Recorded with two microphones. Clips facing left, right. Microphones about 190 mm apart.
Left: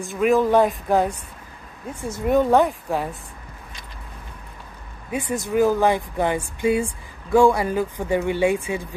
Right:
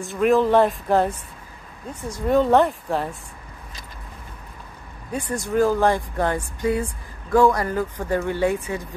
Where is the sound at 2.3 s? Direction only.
10° left (ahead or behind).